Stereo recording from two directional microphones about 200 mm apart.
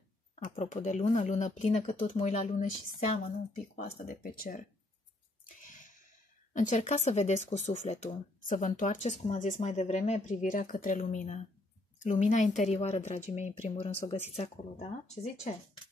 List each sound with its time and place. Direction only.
0.4 s speech: 35° left (ahead or behind)
3.8 s speech: 45° left (ahead or behind)
5.6 s a sound: 40° left (ahead or behind)
6.5 s speech: 40° left (ahead or behind)